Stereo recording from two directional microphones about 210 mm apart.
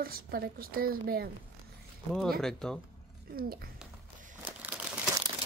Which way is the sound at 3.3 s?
45° right (ahead or behind).